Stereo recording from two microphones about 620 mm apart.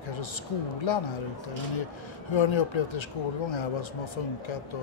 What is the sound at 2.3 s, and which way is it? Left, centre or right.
Speech, left.